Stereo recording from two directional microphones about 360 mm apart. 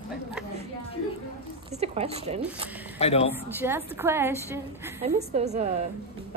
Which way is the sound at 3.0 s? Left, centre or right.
Centre.